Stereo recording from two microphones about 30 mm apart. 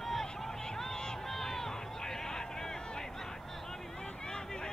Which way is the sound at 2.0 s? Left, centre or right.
Centre.